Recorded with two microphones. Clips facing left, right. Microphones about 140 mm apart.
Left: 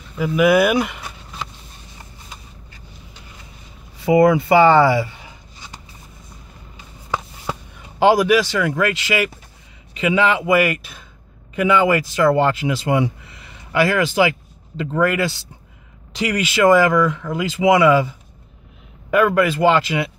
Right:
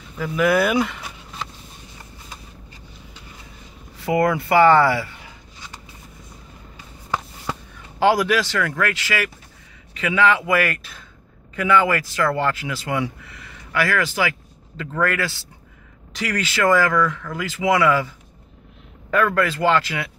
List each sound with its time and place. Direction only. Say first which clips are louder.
0.2 s speech: left 4 dB; 10° left (ahead or behind)
4.0 s speech: left 6 dB; 15° left (ahead or behind)
8.0 s speech: left 4 dB; 15° left (ahead or behind)